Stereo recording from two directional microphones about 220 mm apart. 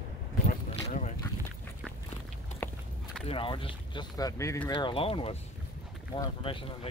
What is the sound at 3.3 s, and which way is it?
Speech, 25° left (ahead or behind).